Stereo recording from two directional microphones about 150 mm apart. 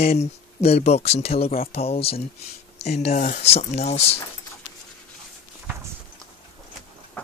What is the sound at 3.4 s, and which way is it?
Speech, 45° left (ahead or behind).